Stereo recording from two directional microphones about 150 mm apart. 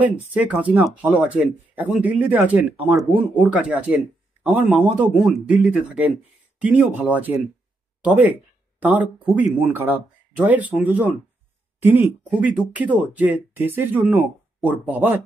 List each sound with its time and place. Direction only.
0.3 s speech: 10° right (ahead or behind)